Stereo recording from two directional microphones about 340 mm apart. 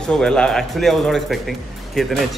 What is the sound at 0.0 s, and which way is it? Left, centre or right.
Speech, centre.